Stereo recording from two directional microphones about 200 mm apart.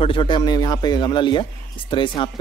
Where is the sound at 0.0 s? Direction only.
25° left (ahead or behind).